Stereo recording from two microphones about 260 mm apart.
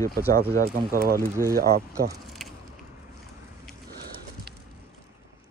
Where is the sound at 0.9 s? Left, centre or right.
Right.